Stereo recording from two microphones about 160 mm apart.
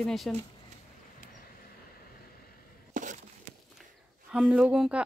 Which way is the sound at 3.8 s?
5° right (ahead or behind).